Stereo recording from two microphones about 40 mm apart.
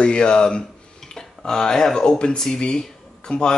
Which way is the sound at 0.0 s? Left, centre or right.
Left.